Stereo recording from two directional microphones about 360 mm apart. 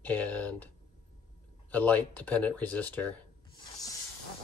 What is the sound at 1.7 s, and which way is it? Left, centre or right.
Speech, centre.